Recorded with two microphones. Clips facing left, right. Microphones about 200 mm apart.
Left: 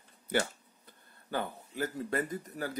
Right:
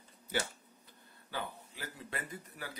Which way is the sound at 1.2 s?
50° left (ahead or behind).